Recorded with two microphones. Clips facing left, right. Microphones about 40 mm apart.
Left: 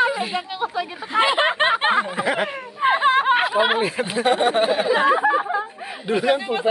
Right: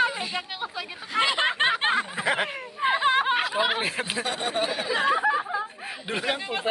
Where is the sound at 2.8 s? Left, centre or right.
Centre.